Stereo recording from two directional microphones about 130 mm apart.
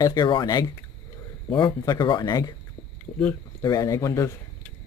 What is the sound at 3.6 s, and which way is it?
Speech, 30° left (ahead or behind).